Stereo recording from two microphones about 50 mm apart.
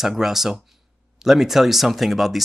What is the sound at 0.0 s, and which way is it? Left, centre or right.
Speech, centre.